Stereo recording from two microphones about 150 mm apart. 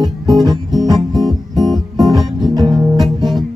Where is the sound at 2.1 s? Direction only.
Centre (ahead or behind).